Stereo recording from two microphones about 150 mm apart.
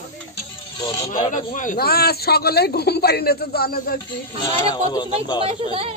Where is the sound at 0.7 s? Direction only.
20° left (ahead or behind).